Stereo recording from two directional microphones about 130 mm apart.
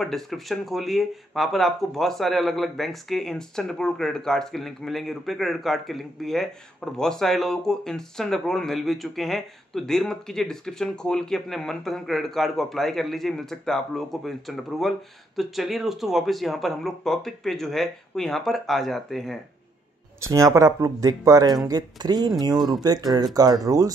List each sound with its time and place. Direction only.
0.0 s speech: centre (ahead or behind)
20.2 s speech: 25° right (ahead or behind)